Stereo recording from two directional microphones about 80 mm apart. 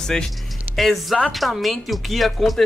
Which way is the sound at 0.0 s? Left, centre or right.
Centre.